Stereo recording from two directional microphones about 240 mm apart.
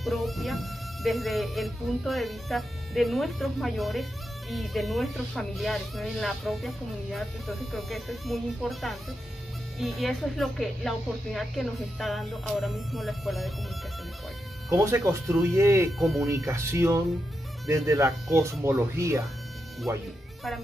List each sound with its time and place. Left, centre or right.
0.0 s speech: centre
14.7 s speech: centre
16.0 s speech: centre
16.3 s speech: centre